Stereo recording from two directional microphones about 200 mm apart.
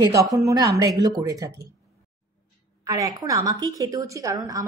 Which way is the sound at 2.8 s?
20° right (ahead or behind).